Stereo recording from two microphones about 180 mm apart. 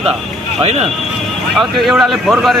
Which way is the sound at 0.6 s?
35° right (ahead or behind).